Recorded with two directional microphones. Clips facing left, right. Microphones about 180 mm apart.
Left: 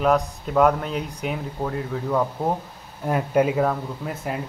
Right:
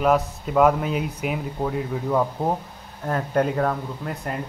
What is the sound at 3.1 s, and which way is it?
Speech, 10° left (ahead or behind).